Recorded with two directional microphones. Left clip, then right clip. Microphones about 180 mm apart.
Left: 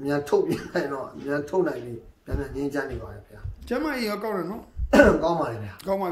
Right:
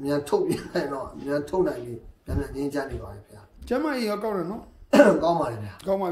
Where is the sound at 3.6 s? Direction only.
15° right (ahead or behind).